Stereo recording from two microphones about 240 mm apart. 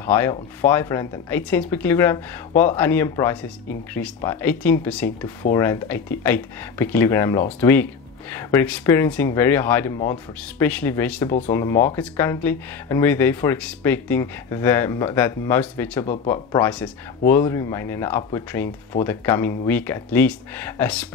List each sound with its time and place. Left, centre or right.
0.0 s speech: centre
11.2 s speech: left
11.5 s speech: centre